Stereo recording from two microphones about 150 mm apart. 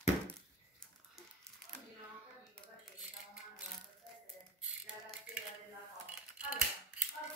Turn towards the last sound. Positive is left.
turn(degrees=-10)  # may be behind; listen again after turning